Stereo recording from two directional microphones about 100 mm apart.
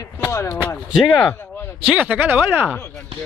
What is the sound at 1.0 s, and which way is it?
Speech, 15° left (ahead or behind).